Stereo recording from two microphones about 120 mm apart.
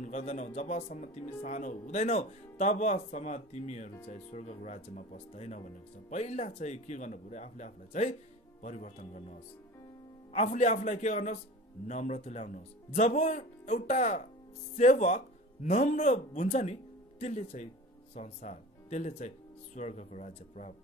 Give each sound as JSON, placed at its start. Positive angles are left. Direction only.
{"t": 0.0, "sound": "speech", "side_deg": 80}
{"t": 8.6, "sound": "speech", "side_deg": 90}
{"t": 10.3, "sound": "a man's voice", "side_deg": 75}
{"t": 11.9, "sound": "a man's voice", "side_deg": 70}
{"t": 18.1, "sound": "speech", "side_deg": 70}